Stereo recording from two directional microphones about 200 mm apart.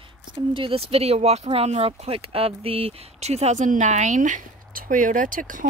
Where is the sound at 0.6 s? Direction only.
30° right (ahead or behind).